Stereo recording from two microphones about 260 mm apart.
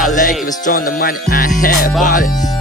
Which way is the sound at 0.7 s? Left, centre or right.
Left.